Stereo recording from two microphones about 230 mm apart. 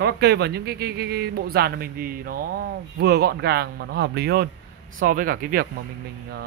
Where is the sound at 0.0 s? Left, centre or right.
Right.